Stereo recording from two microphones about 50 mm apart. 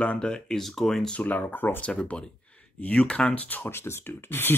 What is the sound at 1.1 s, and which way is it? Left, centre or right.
Speech, left.